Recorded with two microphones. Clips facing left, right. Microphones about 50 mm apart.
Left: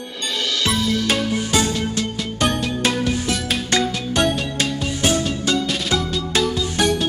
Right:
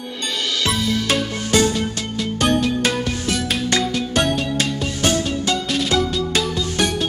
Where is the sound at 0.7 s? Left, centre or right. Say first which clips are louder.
Even; centre.